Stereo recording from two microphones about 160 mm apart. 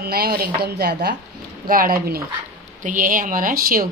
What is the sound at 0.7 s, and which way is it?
Speech, 85° right.